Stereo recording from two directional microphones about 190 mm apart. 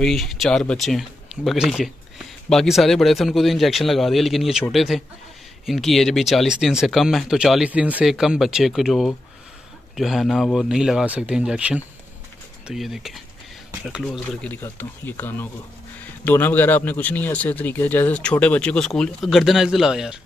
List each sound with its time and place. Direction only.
0.0 s speech: centre (ahead or behind)